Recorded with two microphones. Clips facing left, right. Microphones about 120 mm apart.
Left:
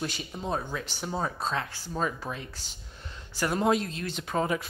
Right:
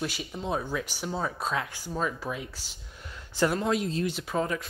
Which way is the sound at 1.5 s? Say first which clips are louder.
Right 1 dB; 10° right (ahead or behind).